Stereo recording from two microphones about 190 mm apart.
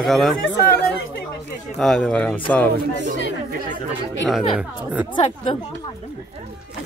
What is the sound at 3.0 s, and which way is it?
Chatter, 50° right (ahead or behind).